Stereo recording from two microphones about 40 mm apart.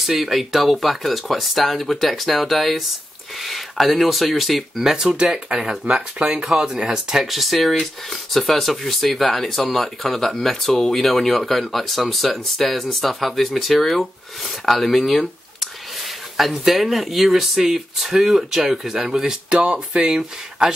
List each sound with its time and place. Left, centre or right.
0.0 s speech: centre
4.8 s speech: centre
7.2 s speech: centre